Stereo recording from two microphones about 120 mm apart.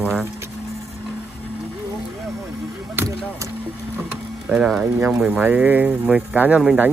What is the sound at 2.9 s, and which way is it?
Music, 25° right (ahead or behind).